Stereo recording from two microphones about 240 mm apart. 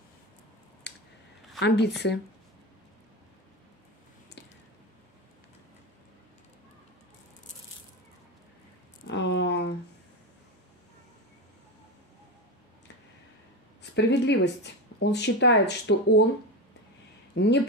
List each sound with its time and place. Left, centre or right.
1.6 s speech: left
9.0 s a sound: left
13.9 s speech: left
17.3 s speech: left